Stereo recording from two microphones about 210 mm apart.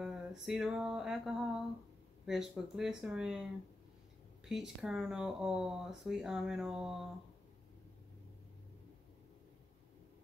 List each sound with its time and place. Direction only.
0.0 s a sound: centre (ahead or behind)
2.2 s speech: centre (ahead or behind)
4.5 s speech: centre (ahead or behind)